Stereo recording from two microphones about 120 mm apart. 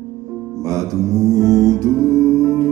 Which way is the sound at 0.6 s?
30° right (ahead or behind).